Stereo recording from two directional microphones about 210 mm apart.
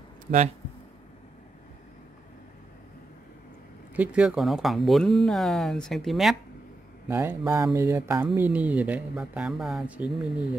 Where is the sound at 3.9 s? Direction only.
5° right (ahead or behind).